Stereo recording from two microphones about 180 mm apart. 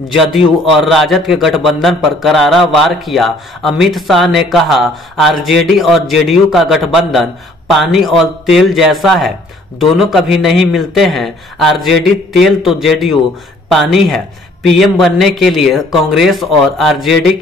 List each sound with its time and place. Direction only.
0.7 s a man's voice: centre (ahead or behind)